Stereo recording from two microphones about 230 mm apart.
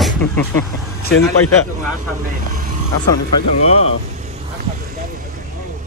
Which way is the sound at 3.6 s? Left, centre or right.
Left.